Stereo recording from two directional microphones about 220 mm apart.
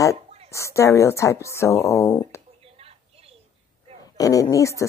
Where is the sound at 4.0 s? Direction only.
15° left (ahead or behind).